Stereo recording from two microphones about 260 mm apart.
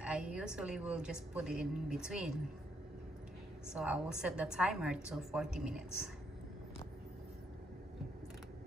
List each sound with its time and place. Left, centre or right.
0.0 s a woman's voice: centre
3.7 s a woman's voice: centre